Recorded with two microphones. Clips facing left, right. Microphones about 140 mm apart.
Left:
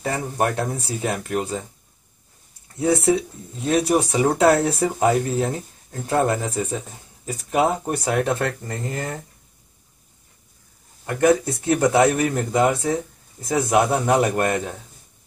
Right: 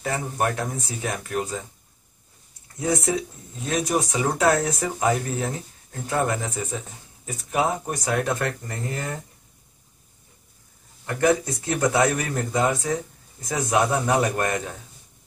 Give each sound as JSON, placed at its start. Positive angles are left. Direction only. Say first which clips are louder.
{"t": 0.0, "sound": "speech", "louder": "left 2 dB", "side_deg": 35}
{"t": 2.8, "sound": "speech", "louder": "left 5 dB", "side_deg": 30}
{"t": 11.6, "sound": "speech", "louder": "left 5 dB", "side_deg": 25}